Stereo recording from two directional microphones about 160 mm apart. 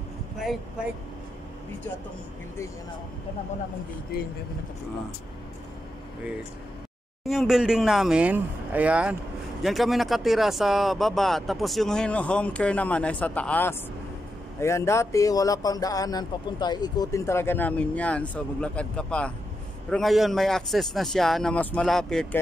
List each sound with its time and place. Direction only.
7.2 s speech: centre (ahead or behind)